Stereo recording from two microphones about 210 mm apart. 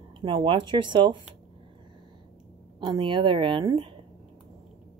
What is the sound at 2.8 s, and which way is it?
A woman's voice, 20° right (ahead or behind).